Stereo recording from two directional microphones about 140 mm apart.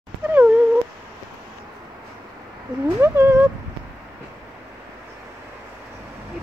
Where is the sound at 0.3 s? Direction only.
10° right (ahead or behind).